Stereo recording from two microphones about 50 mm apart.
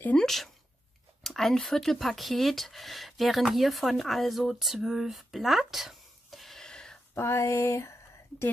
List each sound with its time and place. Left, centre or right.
0.1 s speech: centre
6.6 s a sound: centre
7.2 s speech: left